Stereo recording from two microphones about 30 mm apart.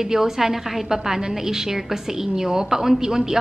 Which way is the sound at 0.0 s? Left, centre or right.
Centre.